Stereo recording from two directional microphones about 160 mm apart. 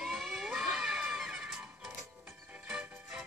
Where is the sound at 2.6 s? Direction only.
5° right (ahead or behind).